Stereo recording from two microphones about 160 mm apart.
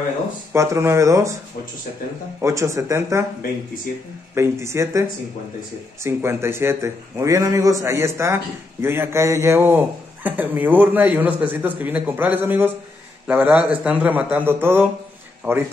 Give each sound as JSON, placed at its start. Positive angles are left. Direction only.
{"t": 0.5, "sound": "speech", "side_deg": -15}
{"t": 2.4, "sound": "speech", "side_deg": -20}
{"t": 4.4, "sound": "speech", "side_deg": -15}
{"t": 6.0, "sound": "speech", "side_deg": -15}